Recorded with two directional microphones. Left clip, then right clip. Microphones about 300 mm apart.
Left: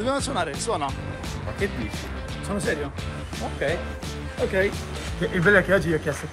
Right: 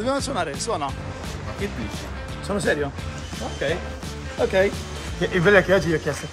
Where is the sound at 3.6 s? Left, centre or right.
Centre.